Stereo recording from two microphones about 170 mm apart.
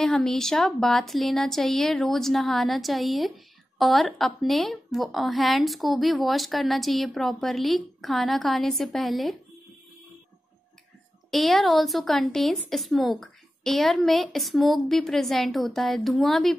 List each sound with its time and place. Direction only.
0.0 s a woman's voice: centre (ahead or behind)
11.2 s a woman's voice: centre (ahead or behind)